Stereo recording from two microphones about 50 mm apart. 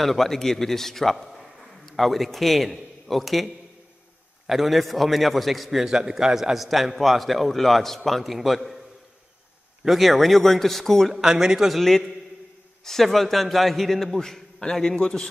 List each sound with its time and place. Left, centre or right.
0.0 s a man's voice: centre
9.8 s a man's voice: centre
11.1 s speech: centre
11.8 s a man's voice: centre